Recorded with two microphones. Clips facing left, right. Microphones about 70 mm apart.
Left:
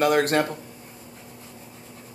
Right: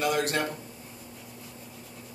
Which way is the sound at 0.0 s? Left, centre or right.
Left.